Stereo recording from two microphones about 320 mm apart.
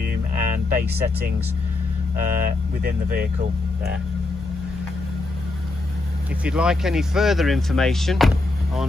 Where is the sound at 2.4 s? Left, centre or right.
Right.